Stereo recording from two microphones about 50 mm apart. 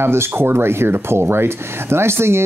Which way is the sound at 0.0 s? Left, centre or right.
Right.